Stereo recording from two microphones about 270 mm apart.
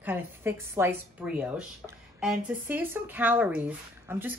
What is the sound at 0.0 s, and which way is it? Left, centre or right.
Speech, centre.